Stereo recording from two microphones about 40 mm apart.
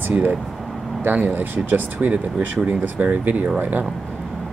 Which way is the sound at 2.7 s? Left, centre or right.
Right.